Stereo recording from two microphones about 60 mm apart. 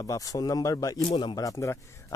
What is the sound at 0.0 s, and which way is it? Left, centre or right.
Speech, left.